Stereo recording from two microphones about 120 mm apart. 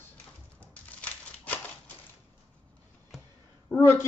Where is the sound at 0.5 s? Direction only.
10° left (ahead or behind).